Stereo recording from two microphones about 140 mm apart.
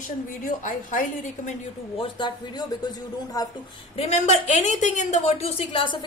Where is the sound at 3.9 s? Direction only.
50° left (ahead or behind).